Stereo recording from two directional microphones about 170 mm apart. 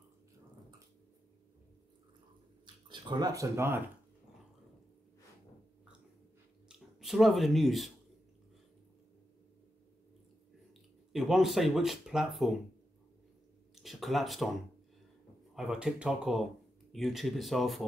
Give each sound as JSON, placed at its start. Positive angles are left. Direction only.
{"t": 2.6, "sound": "speech", "side_deg": -25}
{"t": 6.7, "sound": "speech", "side_deg": 0}
{"t": 11.1, "sound": "speech", "side_deg": 0}
{"t": 13.7, "sound": "speech", "side_deg": 0}
{"t": 15.5, "sound": "speech", "side_deg": -5}